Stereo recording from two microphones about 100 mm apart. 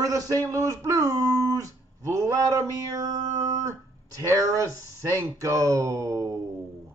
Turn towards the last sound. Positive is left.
turn(degrees=-35)  # may be behind; listen again after turning